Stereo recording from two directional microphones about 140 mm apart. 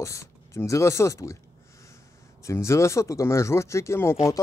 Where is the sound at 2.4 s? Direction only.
20° left (ahead or behind).